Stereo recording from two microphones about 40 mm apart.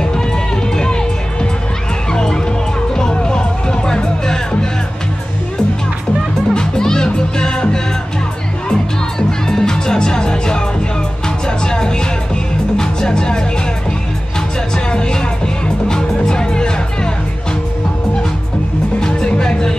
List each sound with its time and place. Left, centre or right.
0.0 s run: centre
0.7 s music: left
6.5 s music: centre
9.5 s music: centre
14.9 s music: left
18.9 s music: centre